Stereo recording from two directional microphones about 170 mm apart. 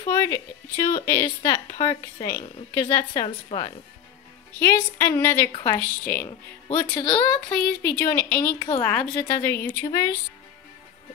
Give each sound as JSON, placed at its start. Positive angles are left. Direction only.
{"t": 0.0, "sound": "a woman's voice", "side_deg": 20}
{"t": 4.6, "sound": "a woman's voice", "side_deg": 15}
{"t": 7.0, "sound": "a woman's voice", "side_deg": 25}
{"t": 7.5, "sound": "a woman's voice", "side_deg": 10}
{"t": 8.5, "sound": "a woman's voice", "side_deg": 25}
{"t": 8.8, "sound": "a woman's voice", "side_deg": 15}